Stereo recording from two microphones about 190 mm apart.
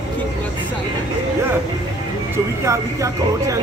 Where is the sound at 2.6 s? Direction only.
15° right (ahead or behind).